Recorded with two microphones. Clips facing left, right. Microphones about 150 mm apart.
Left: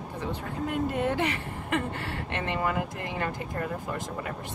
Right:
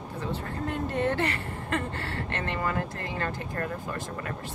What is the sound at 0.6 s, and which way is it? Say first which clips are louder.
Speech: left 1 dB; 10° left (ahead or behind).